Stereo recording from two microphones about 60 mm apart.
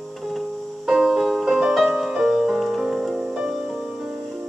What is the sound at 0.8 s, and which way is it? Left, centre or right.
Music, centre.